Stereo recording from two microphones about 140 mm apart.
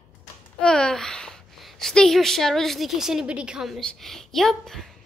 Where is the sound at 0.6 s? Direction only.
5° left (ahead or behind).